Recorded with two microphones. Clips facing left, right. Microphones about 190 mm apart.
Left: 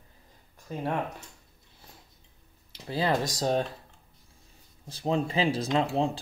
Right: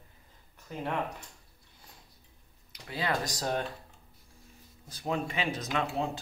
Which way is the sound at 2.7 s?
30° left (ahead or behind).